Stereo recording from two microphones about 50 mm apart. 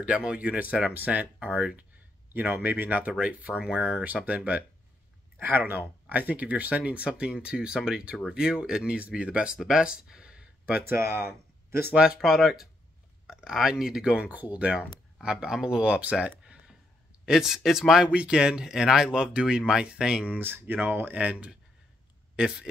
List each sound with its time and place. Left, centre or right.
0.0 s speech: right
1.5 s speech: centre
2.3 s speech: right
5.4 s speech: right; by 10.5 s centre
11.9 s speech: right
12.2 s speech: centre
14.3 s speech: right
15.2 s speech: centre
17.3 s speech: centre
18.1 s speech: right
20.3 s speech: right
21.2 s speech: right